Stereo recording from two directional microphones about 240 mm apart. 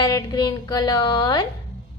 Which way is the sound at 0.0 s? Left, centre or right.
Centre.